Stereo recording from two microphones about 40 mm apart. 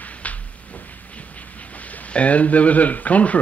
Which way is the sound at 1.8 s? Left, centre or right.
Left.